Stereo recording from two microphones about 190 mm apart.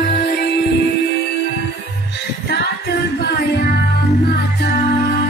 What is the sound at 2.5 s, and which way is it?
Music, 60° left (ahead or behind).